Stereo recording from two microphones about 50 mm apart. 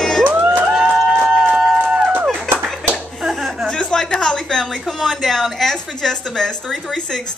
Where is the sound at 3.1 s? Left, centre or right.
Centre.